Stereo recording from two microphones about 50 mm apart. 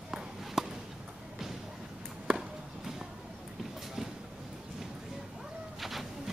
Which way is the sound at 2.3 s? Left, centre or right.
Centre.